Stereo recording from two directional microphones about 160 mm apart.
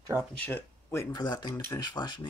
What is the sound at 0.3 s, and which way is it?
Speech, 15° left (ahead or behind).